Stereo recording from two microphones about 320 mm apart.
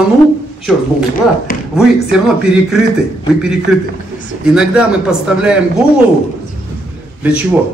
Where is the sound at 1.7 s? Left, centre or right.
Centre.